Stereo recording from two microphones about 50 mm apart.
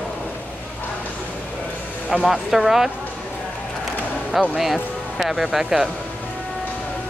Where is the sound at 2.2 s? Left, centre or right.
Centre.